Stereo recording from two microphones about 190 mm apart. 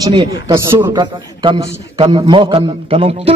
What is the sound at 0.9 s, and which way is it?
A man's voice, 25° right (ahead or behind).